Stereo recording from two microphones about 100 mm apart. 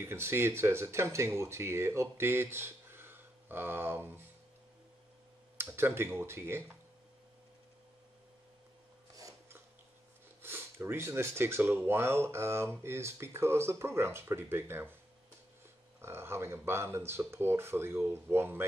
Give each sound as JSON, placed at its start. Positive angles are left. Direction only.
{"t": 0.0, "sound": "speech", "side_deg": -25}
{"t": 5.6, "sound": "speech", "side_deg": -25}
{"t": 10.4, "sound": "speech", "side_deg": -25}
{"t": 16.0, "sound": "speech", "side_deg": -25}